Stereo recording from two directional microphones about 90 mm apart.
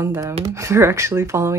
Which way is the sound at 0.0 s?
30° right (ahead or behind).